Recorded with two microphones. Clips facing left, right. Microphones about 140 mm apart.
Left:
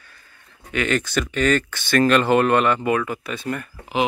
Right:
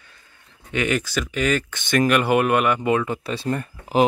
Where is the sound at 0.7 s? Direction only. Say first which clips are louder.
Even; 15° right (ahead or behind).